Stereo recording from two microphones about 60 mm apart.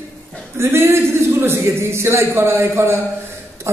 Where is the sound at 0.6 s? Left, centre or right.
Right.